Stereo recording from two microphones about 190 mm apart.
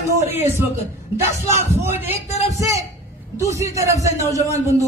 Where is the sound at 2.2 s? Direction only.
35° left (ahead or behind).